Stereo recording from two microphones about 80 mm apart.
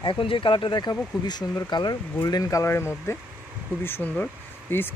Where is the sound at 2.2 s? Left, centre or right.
Left.